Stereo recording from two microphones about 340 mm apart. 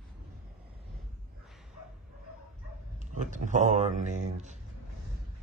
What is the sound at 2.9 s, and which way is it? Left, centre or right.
Speech, right.